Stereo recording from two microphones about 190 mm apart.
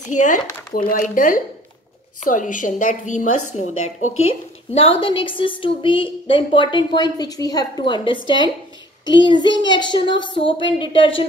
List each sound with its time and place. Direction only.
0.1 s a woman's voice: 40° left (ahead or behind)
4.7 s a woman's voice: 30° left (ahead or behind)